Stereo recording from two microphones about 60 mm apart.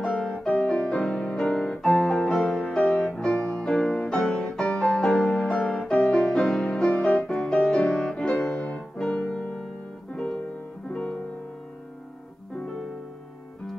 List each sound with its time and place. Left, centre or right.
0.5 s music: centre